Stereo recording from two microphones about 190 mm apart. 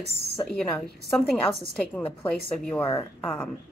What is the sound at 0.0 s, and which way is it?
Speech, 60° right (ahead or behind).